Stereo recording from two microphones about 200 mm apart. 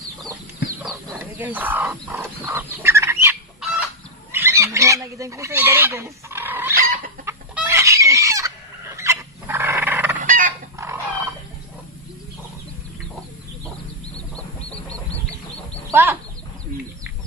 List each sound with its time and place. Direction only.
1.4 s speech: 10° right (ahead or behind)
3.6 s fowl: 5° right (ahead or behind)
6.7 s chicken: 45° right (ahead or behind)
7.2 s chicken: 10° right (ahead or behind)
10.1 s fowl: 40° right (ahead or behind)
10.8 s fowl: 15° right (ahead or behind)
15.9 s a sound: 10° right (ahead or behind)